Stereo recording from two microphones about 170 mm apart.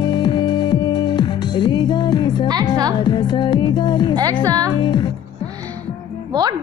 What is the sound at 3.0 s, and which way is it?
A woman's voice, 25° left (ahead or behind).